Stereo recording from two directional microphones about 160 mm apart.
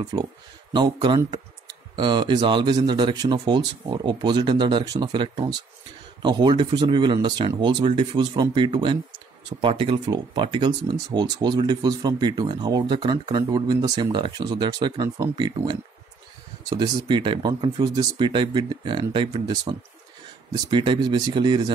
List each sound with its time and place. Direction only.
0.0 s speech: 25° right (ahead or behind)
20.6 s speech: 30° right (ahead or behind)